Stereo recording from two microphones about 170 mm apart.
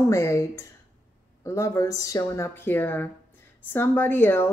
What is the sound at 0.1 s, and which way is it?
A woman's voice, 15° left (ahead or behind).